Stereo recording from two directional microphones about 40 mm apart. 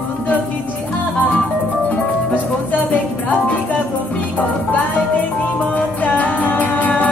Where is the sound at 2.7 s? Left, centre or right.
Left.